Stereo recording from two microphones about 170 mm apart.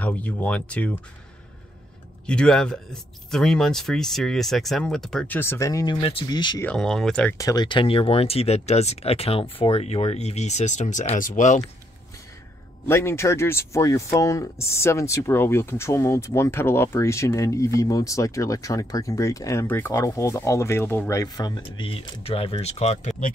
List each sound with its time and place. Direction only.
0.0 s speech: 10° left (ahead or behind)
2.2 s speech: 5° left (ahead or behind); by 6.6 s 25° left (ahead or behind)
6.6 s speech: 5° left (ahead or behind)
7.3 s speech: 20° left (ahead or behind); by 11.6 s 45° left (ahead or behind)
12.8 s speech: 15° left (ahead or behind); by 23.3 s 40° left (ahead or behind)